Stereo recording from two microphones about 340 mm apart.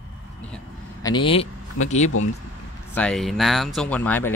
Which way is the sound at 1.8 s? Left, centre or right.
Centre.